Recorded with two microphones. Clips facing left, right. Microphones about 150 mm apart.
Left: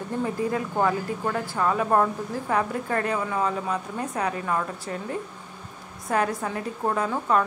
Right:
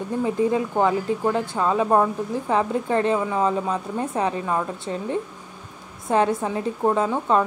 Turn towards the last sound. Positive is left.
turn(degrees=-25)  # may be behind; listen again after turning